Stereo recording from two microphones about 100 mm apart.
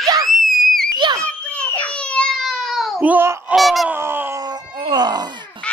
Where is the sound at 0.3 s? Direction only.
Centre (ahead or behind).